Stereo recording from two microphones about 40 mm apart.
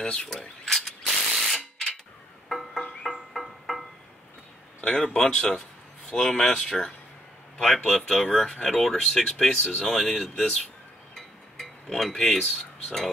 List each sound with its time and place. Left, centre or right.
0.0 s mechanisms: left
0.3 s mechanisms: centre
1.5 s a sound: centre
2.5 s music: centre
3.0 s a sound: centre
4.8 s speech: centre
7.5 s speech: centre
9.5 s speech: centre
11.1 s a sound: centre